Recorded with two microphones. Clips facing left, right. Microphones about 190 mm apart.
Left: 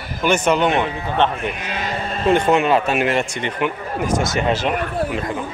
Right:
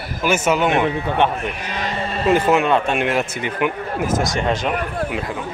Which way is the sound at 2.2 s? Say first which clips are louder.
Even; 5° right (ahead or behind).